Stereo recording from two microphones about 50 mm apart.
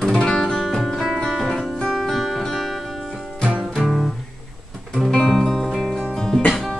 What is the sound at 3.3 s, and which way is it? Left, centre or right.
Music, centre.